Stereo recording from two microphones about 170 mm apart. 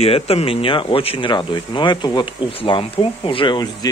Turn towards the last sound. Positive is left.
turn(degrees=25)  # may be behind; listen again after turning